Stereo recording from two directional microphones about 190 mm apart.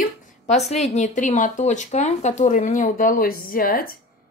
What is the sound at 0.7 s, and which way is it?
Speech, 35° left (ahead or behind).